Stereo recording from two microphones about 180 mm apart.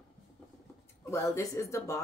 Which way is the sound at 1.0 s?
15° left (ahead or behind).